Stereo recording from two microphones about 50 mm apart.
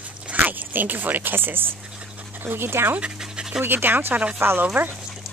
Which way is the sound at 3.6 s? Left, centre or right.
Right.